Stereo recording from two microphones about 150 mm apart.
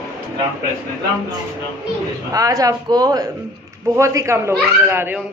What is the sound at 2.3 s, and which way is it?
A child's voice, 25° right (ahead or behind).